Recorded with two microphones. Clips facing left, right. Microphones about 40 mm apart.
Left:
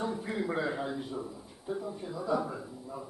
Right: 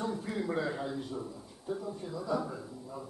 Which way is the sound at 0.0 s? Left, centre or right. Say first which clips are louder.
Left 1 dB; centre.